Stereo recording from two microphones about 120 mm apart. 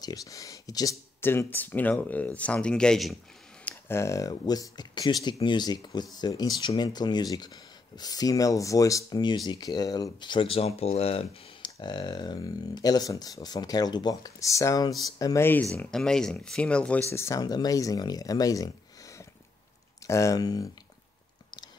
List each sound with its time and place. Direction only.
0.0 s speech: 30° left (ahead or behind)
1.2 s speech: 20° left (ahead or behind); by 3.2 s 5° left (ahead or behind)
3.9 s speech: 25° left (ahead or behind); by 11.2 s 55° left (ahead or behind)
11.6 s speech: 40° left (ahead or behind)
15.4 s speech: 15° left (ahead or behind)
17.1 s speech: 20° left (ahead or behind)
17.4 s speech: 35° left (ahead or behind)